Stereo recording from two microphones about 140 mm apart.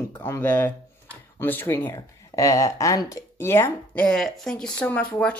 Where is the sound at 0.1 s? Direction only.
15° left (ahead or behind).